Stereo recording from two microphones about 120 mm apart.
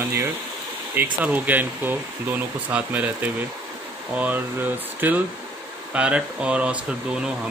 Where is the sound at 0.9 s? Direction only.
15° right (ahead or behind).